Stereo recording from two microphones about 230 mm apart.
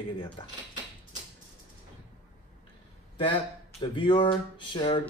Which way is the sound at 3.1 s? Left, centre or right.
Left.